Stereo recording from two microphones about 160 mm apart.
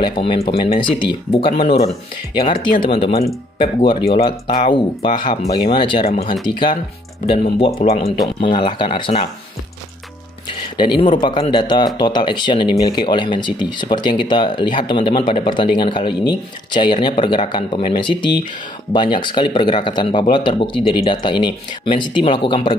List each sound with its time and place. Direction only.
0.0 s speech: 30° left (ahead or behind)
8.2 s speech: 30° left (ahead or behind)
10.8 s speech: 30° left (ahead or behind)